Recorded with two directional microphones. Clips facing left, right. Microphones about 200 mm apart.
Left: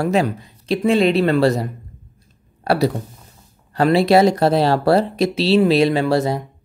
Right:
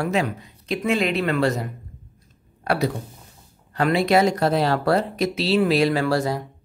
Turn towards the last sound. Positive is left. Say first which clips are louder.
# left 4 dB
turn(degrees=25)  # may be behind; listen again after turning